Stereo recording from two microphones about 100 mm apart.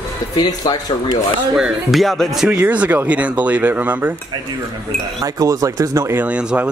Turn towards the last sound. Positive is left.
turn(degrees=-10)  # may be behind; listen again after turning